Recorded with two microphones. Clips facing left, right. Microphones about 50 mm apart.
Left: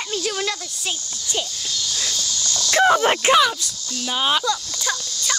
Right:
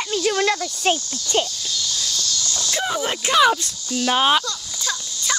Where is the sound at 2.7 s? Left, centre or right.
Left.